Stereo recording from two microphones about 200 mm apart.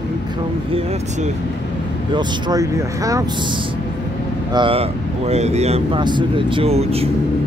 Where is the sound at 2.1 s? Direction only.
15° right (ahead or behind).